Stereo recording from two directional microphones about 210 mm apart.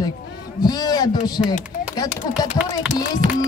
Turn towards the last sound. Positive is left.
turn(degrees=-40)  # may be behind; listen again after turning